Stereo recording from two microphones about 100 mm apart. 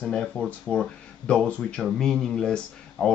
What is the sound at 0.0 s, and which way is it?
Speech, 5° left (ahead or behind).